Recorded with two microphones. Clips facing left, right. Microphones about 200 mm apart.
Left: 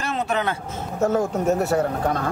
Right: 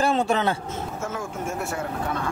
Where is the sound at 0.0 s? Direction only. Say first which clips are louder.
Right 3 dB; 30° right (ahead or behind).